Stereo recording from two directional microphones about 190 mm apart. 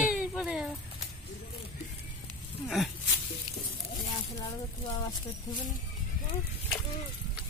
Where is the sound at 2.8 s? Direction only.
Centre (ahead or behind).